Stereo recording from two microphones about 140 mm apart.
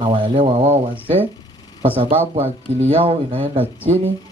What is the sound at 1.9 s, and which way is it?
Speech, 40° right (ahead or behind).